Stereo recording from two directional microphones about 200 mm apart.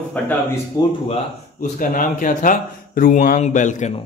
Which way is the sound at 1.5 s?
40° left (ahead or behind).